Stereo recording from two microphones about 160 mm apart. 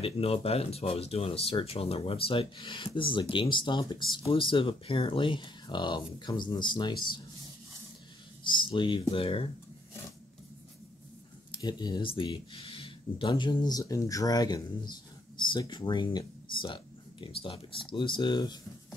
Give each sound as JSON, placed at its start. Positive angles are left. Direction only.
{"t": 0.0, "sound": "speech", "side_deg": 35}
{"t": 8.5, "sound": "speech", "side_deg": 30}
{"t": 11.5, "sound": "speech", "side_deg": 25}